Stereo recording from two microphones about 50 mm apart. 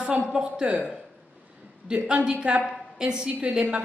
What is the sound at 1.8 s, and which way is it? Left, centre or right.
Speech, centre.